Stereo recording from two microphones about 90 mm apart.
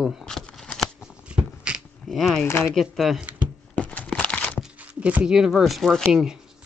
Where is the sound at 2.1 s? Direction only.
Centre (ahead or behind).